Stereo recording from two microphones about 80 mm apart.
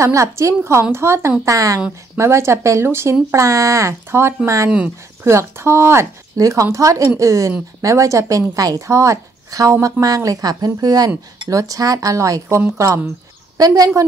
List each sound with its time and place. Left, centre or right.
0.0 s a woman's voice: right
4.6 s speech: centre
5.2 s a woman's voice: right
13.6 s a woman's voice: right